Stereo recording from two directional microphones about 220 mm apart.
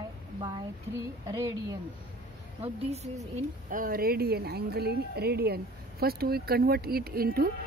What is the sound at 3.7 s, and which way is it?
Speech, 40° right (ahead or behind).